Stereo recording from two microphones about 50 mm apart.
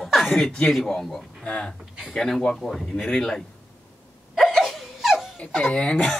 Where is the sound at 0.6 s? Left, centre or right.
Centre.